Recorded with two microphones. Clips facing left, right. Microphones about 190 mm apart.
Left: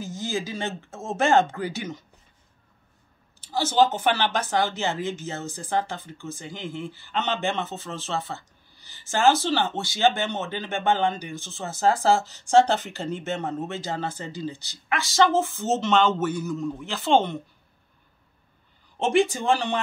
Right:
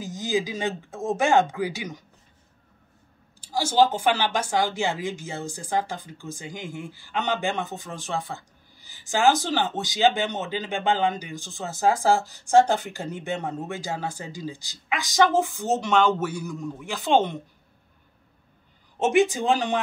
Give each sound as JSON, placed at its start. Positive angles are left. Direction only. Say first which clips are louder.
{"t": 0.0, "sound": "speech", "louder": "right 3 dB", "side_deg": -15}
{"t": 3.3, "sound": "speech", "louder": "even", "side_deg": -10}
{"t": 19.3, "sound": "speech", "louder": "right 1 dB", "side_deg": -15}